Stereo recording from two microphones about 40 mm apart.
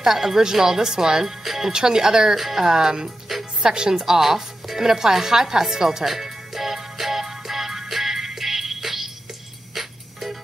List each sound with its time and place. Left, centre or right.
0.0 s speech: centre
1.7 s speech: centre
3.9 s music: centre